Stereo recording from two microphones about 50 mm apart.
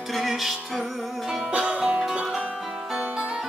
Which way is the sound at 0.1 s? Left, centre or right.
Centre.